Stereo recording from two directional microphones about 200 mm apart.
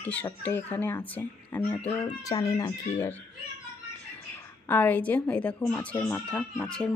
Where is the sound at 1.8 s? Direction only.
20° left (ahead or behind).